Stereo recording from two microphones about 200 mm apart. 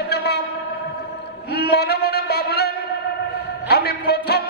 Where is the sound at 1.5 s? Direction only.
55° left (ahead or behind).